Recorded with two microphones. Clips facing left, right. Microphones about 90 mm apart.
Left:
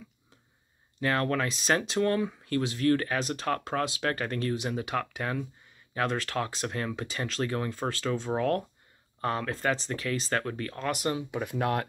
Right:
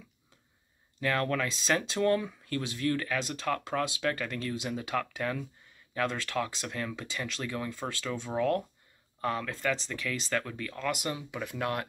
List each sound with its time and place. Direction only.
1.0 s speech: 30° left (ahead or behind)